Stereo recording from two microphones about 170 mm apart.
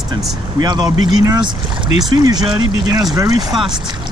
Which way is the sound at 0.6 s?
25° right (ahead or behind).